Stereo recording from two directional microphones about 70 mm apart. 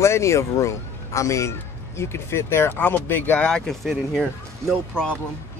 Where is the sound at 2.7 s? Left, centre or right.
Left.